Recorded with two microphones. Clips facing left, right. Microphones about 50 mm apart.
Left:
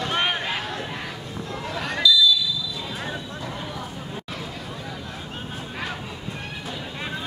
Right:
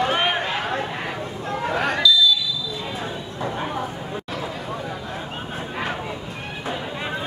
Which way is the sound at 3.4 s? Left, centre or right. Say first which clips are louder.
Right 10 dB; right.